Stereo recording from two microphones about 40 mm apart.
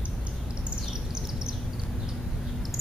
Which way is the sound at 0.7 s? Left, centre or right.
Centre.